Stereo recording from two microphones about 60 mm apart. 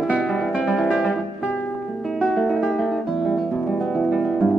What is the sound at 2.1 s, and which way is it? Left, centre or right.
Music, centre.